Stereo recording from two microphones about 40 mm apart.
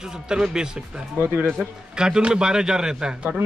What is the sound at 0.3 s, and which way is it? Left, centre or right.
Speech, centre.